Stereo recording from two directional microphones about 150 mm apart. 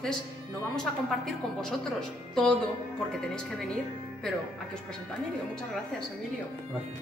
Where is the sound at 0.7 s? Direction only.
5° left (ahead or behind).